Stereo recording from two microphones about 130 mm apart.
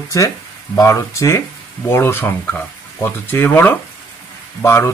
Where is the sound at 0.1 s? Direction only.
25° left (ahead or behind).